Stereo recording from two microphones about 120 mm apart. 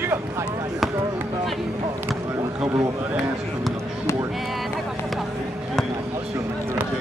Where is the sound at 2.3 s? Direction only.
25° right (ahead or behind).